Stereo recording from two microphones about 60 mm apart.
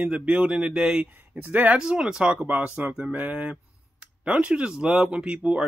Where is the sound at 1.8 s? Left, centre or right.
Centre.